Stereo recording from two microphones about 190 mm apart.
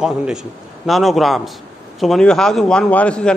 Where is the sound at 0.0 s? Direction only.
5° right (ahead or behind).